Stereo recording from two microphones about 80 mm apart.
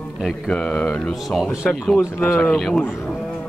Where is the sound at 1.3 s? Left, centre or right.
Centre.